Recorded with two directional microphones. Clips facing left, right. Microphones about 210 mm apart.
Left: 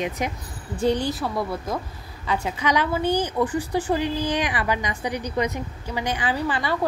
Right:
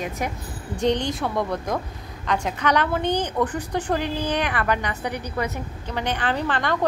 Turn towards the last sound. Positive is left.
turn(degrees=10)  # may be behind; listen again after turning